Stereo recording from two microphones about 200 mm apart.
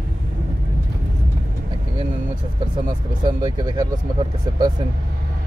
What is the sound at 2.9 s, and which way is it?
Speech, 25° right (ahead or behind).